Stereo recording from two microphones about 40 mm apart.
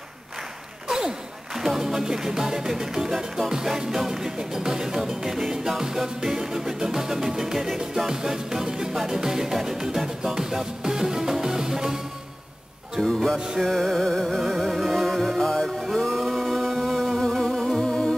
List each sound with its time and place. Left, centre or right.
0.8 s music: centre
13.0 s music: centre
14.7 s music: centre
17.8 s music: centre